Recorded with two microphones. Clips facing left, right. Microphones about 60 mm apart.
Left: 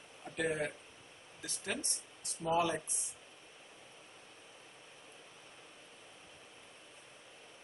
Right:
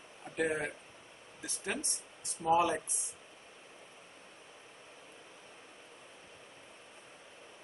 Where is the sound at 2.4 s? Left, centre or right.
Centre.